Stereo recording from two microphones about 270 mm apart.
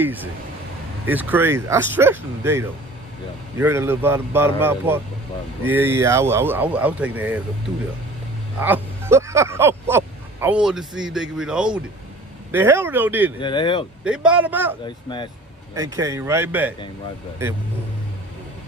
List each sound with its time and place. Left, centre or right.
0.0 s speech: centre
8.5 s speech: centre
13.4 s speech: centre
14.0 s a man's voice: centre
14.9 s speech: centre
15.7 s speech: centre